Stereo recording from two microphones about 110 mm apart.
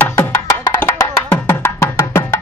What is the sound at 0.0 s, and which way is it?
Music, 15° left (ahead or behind).